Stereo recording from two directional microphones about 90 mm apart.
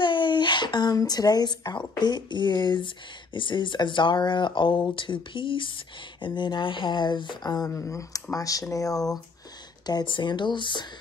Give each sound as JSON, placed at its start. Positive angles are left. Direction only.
{"t": 0.0, "sound": "a sound", "side_deg": 65}
{"t": 2.0, "sound": "speech", "side_deg": 55}
{"t": 9.8, "sound": "speech", "side_deg": 55}